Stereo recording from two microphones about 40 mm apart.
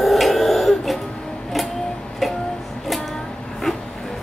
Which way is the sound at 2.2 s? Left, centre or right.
Centre.